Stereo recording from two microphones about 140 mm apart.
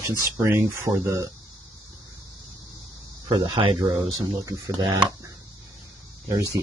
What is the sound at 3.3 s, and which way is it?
Speech, 35° right (ahead or behind).